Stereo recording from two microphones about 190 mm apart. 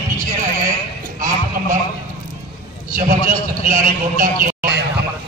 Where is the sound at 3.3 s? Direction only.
45° right (ahead or behind).